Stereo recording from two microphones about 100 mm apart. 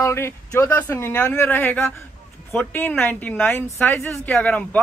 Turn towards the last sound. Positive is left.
turn(degrees=15)  # may be behind; listen again after turning